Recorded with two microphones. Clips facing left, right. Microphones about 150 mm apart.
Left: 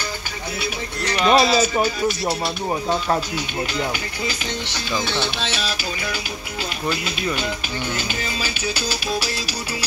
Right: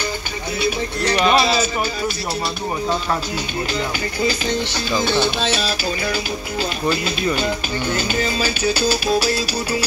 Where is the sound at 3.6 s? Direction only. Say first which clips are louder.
Right 2 dB; 35° right (ahead or behind).